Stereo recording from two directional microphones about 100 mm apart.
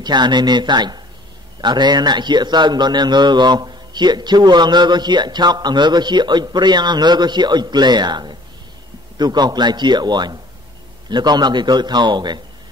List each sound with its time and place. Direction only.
0.0 s a man's voice: 45° right (ahead or behind)